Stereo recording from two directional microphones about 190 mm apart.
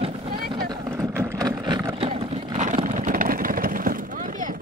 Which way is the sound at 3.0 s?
45° right (ahead or behind).